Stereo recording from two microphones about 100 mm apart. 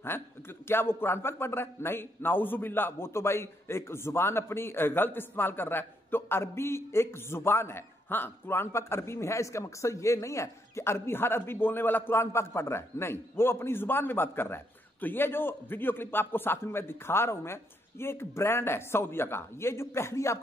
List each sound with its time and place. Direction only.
0.7 s a man's voice: 25° left (ahead or behind)